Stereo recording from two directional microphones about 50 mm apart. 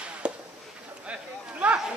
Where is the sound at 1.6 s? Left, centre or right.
Right.